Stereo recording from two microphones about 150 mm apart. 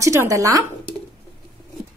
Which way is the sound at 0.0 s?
20° right (ahead or behind).